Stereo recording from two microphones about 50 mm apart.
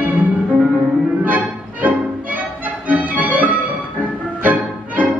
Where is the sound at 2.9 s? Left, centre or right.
Right.